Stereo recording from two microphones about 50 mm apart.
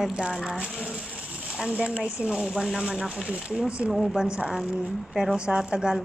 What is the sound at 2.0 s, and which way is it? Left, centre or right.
Speech, centre.